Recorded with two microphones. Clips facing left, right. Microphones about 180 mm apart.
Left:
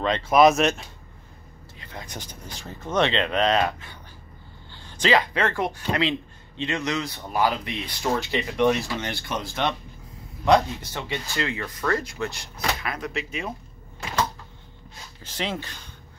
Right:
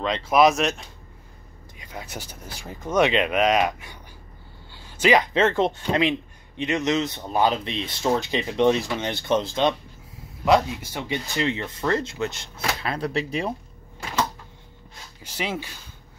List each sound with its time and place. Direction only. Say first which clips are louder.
0.0 s speech: left 1 dB; centre (ahead or behind)
1.8 s speech: right 2 dB; 10° right (ahead or behind)
10.4 s speech: even; 10° right (ahead or behind); by 13.5 s 35° right (ahead or behind)
15.2 s speech: right 1 dB; 10° right (ahead or behind)